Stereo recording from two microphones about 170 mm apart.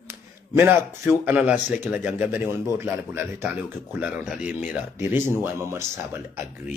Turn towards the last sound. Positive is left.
turn(degrees=-15)  # may be behind; listen again after turning